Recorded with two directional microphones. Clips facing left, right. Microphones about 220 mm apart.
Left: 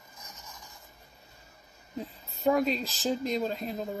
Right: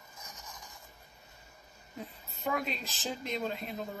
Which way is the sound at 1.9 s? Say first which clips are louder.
Left 6 dB; 35° left (ahead or behind).